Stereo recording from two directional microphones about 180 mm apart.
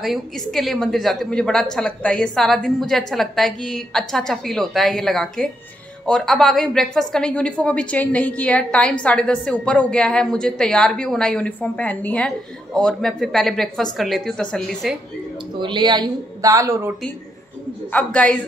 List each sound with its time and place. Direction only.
0.0 s a woman's voice: centre (ahead or behind)
15.6 s a woman's voice: 25° right (ahead or behind)
17.9 s a man's voice: 5° left (ahead or behind)